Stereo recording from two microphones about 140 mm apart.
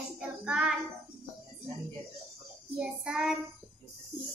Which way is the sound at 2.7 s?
5° right (ahead or behind).